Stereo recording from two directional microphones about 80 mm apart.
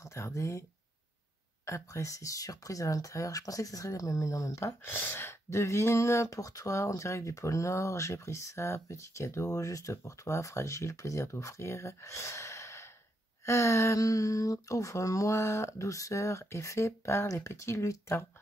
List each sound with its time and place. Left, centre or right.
0.0 s speech: left
1.7 s speech: left
4.8 s speech: left